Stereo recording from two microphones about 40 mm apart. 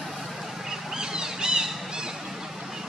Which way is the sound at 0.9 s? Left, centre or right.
Centre.